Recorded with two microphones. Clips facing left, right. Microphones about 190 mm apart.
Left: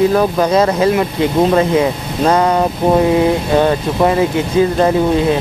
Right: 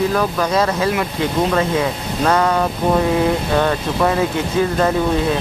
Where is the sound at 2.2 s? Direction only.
20° left (ahead or behind).